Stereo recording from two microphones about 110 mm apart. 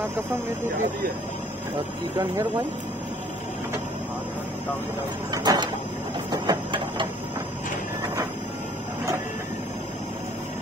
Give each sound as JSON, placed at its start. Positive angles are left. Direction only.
{"t": 5.3, "sound": "sliding door", "side_deg": -35}
{"t": 6.3, "sound": "printer", "side_deg": -40}